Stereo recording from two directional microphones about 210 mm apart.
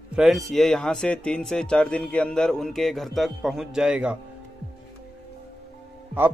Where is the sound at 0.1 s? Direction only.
Centre (ahead or behind).